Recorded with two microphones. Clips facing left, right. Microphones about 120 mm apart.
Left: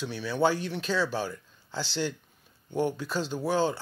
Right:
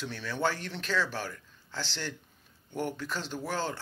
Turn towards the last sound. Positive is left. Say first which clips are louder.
# left 7 dB
turn(degrees=15)  # may be behind; listen again after turning